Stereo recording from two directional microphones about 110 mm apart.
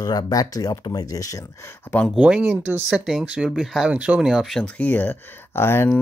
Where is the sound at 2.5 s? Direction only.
20° right (ahead or behind).